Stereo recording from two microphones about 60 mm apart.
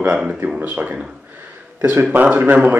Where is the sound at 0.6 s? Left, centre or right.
Right.